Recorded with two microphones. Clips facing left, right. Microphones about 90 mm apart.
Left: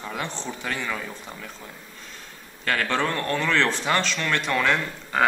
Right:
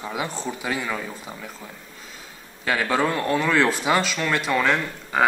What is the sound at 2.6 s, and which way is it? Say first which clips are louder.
Speech: right 2 dB; 10° right (ahead or behind).